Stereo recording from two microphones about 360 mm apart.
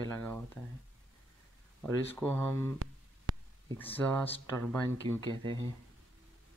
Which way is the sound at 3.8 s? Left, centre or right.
Centre.